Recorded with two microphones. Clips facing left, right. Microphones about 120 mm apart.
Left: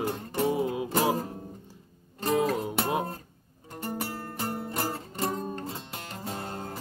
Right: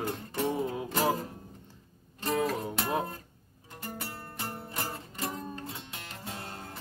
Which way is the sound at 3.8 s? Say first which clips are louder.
Left 7 dB; 35° left (ahead or behind).